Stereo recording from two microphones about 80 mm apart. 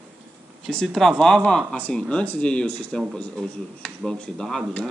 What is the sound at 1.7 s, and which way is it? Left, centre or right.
Speech, left.